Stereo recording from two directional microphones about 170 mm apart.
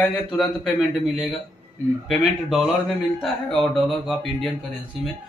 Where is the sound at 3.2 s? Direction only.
Centre (ahead or behind).